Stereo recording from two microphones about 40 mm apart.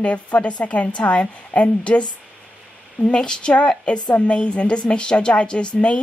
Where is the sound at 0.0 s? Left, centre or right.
Left.